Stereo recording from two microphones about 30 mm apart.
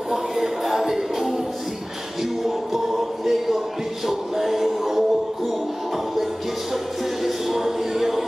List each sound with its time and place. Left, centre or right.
0.1 s music: centre
3.3 s a sound: centre
4.1 s music: centre
7.2 s music: centre